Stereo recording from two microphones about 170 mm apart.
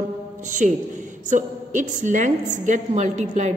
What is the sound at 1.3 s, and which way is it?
A woman's voice, 45° right (ahead or behind).